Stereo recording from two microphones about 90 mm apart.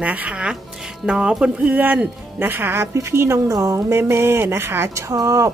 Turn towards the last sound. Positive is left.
turn(degrees=-40)  # may be behind; listen again after turning